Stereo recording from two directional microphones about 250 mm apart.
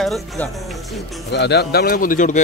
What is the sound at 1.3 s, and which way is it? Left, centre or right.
A man's voice, left.